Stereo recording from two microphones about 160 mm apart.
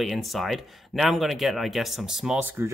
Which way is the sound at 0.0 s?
Centre (ahead or behind).